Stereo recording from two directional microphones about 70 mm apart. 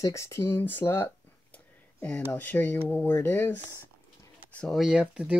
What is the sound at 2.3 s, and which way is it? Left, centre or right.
Speech, left.